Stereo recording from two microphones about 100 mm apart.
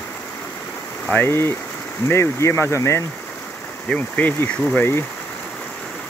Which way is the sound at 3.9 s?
15° left (ahead or behind).